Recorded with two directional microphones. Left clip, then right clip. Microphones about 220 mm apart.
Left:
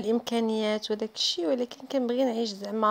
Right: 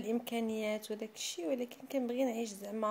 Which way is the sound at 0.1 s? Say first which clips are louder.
Left 9 dB; 25° left (ahead or behind).